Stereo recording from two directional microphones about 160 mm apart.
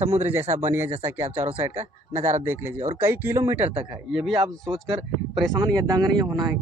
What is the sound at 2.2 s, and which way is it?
Speech, 50° right (ahead or behind).